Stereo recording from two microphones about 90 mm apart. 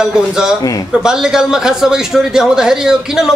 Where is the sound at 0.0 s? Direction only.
5° right (ahead or behind).